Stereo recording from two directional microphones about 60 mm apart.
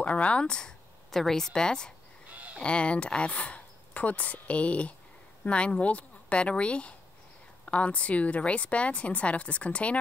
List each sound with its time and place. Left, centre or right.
0.0 s a woman's voice: left